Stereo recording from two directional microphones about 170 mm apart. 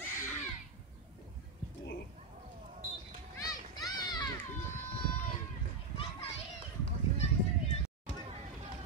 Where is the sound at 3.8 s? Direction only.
25° left (ahead or behind).